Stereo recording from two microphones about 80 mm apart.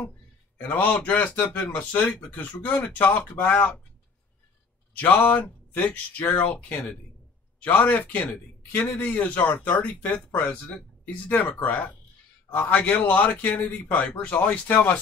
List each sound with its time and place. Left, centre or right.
0.6 s speech: centre
4.9 s speech: centre